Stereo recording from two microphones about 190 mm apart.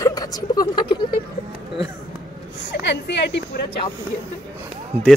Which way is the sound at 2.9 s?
65° left (ahead or behind).